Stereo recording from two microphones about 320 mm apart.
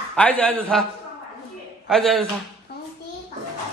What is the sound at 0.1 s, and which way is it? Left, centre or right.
Speech, centre.